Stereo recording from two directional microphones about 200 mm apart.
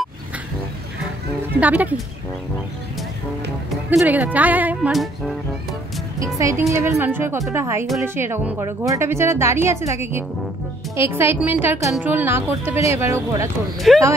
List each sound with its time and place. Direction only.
1.6 s a woman's voice: 10° right (ahead or behind)
3.9 s a woman's voice: 10° right (ahead or behind)
6.1 s a woman's voice: 15° right (ahead or behind)
13.7 s speech: centre (ahead or behind)